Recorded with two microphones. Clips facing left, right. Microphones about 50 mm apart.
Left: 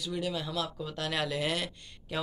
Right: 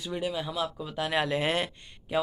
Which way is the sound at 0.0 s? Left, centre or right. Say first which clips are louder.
Right 2 dB; right.